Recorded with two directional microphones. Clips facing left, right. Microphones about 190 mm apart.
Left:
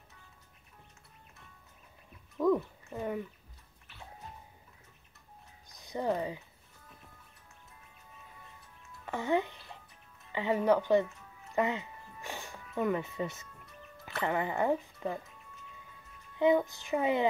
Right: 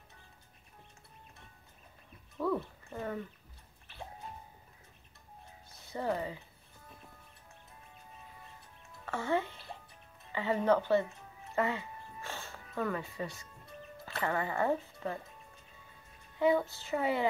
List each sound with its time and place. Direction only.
2.3 s wild animals: 15° left (ahead or behind)
5.7 s speech: 15° left (ahead or behind)
9.0 s speech: 15° left (ahead or behind)
11.5 s music: 20° left (ahead or behind)
14.0 s speech: 20° left (ahead or behind)
16.3 s a woman's voice: 20° left (ahead or behind)